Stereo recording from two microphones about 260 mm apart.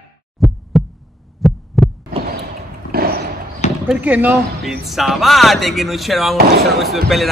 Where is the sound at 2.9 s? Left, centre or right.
Right.